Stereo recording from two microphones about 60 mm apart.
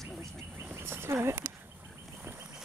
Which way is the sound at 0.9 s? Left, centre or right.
Right.